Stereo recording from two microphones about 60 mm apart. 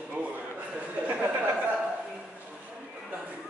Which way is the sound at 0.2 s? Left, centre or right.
Right.